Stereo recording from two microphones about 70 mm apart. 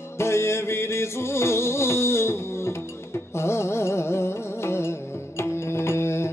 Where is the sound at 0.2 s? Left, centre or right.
Left.